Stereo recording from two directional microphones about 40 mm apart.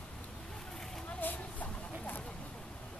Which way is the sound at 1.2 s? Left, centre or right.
Left.